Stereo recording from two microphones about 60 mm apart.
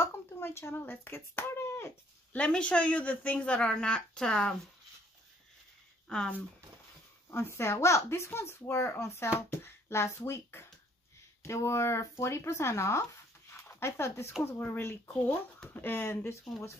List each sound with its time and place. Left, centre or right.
0.0 s a child's voice: left
2.3 s speech: centre
6.0 s speech: centre
7.2 s a child's voice: left